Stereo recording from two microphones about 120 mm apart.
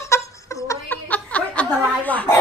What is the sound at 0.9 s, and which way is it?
Chuckle, 10° left (ahead or behind).